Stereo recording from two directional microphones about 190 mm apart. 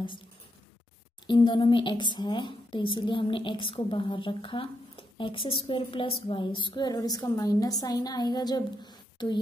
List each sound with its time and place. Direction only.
1.2 s a woman's voice: 25° left (ahead or behind)